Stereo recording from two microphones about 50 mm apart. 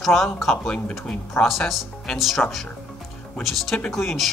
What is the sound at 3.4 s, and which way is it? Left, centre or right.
Speech, centre.